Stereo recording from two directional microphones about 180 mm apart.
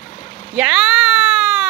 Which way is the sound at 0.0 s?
45° left (ahead or behind).